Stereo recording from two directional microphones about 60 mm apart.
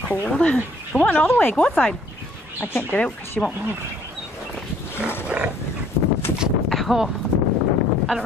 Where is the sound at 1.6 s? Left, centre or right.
Centre.